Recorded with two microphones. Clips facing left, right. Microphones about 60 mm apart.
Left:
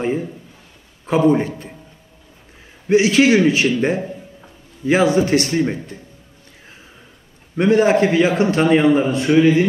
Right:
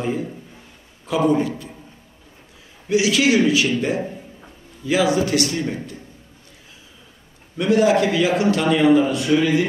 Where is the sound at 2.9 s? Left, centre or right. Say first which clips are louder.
Left 4 dB; left.